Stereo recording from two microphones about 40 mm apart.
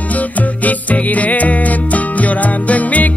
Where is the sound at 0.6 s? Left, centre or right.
Left.